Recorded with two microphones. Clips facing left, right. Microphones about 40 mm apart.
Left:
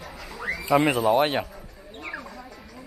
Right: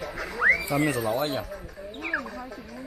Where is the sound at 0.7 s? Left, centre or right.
Left.